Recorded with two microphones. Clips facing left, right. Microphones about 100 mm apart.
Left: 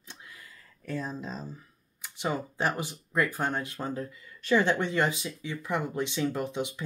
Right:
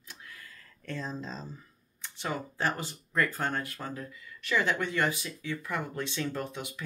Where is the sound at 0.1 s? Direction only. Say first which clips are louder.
Even; 20° left (ahead or behind).